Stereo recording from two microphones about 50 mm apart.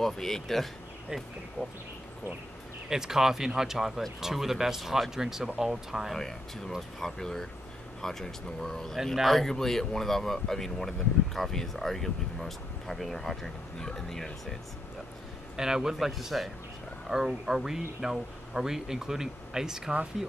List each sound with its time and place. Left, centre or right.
0.0 s speech: centre
1.6 s speech: left
2.9 s speech: centre
7.0 s speech: centre
8.9 s speech: centre
15.5 s speech: centre